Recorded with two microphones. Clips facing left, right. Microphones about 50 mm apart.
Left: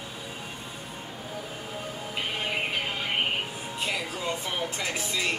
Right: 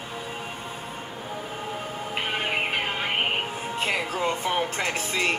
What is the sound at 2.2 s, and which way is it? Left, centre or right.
Music, right.